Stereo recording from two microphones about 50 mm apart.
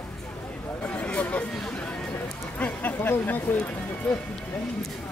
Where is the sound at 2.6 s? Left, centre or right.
Left.